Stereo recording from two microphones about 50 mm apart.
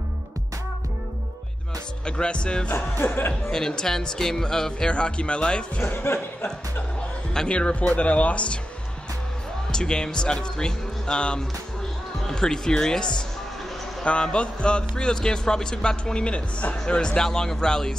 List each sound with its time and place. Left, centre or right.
2.0 s speech: centre
3.2 s speech: left
3.5 s a man's voice: centre
5.8 s speech: left
7.3 s speech: left
9.7 s a man's voice: centre